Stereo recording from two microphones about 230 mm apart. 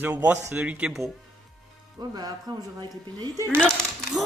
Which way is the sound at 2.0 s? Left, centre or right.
Centre.